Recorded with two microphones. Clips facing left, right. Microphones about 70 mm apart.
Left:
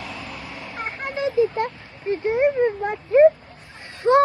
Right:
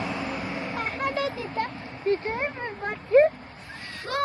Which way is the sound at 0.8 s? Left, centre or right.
Left.